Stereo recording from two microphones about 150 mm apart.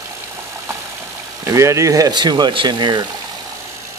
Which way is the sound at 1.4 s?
20° right (ahead or behind).